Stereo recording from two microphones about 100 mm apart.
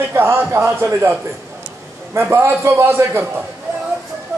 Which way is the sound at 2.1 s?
25° right (ahead or behind).